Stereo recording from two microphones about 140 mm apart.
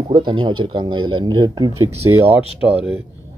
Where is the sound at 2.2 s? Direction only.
45° right (ahead or behind).